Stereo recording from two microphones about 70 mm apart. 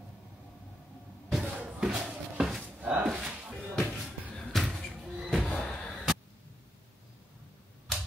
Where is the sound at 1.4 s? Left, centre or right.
Centre.